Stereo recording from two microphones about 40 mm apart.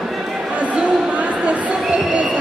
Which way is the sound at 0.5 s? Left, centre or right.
Right.